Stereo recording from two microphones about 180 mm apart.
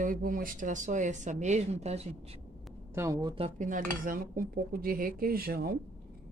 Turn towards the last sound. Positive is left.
turn(degrees=-55)  # may be behind; listen again after turning